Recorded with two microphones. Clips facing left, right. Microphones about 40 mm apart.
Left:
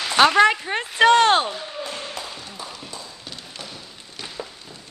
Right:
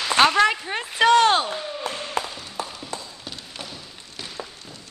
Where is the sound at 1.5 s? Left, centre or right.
Right.